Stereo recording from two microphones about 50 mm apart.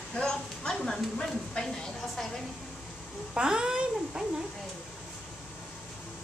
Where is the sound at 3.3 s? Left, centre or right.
Centre.